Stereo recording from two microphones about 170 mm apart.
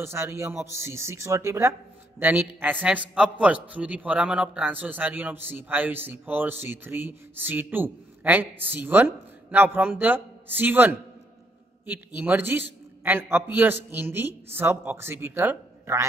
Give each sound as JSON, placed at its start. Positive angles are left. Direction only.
{"t": 0.0, "sound": "a man's voice", "side_deg": -15}
{"t": 12.2, "sound": "a man's voice", "side_deg": -10}